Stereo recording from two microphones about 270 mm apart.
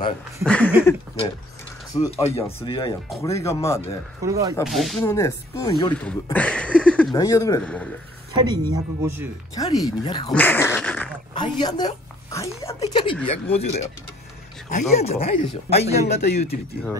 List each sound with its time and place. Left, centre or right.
0.4 s a sound: centre
1.9 s speech: centre
4.2 s speech: centre
4.6 s a sound: centre
5.0 s speech: centre
6.0 s speech: centre
8.4 s speech: centre
9.6 s speech: centre
11.3 s a woman's voice: centre